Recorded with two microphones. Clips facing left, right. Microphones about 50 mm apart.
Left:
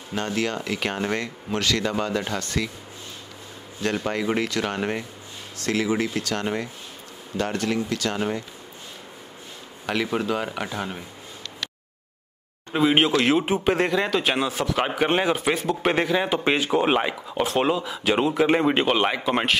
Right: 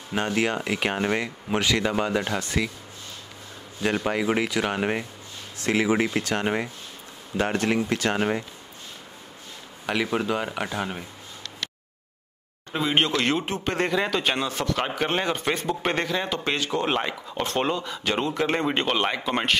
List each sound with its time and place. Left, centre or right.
0.1 s speech: centre
3.8 s speech: centre; by 8.5 s right
9.8 s speech: centre
12.7 s speech: centre